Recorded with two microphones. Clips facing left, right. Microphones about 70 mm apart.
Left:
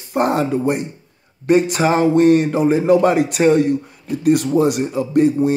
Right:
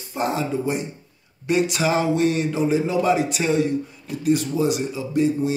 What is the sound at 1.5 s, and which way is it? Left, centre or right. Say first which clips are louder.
A man's voice: left 6 dB; left.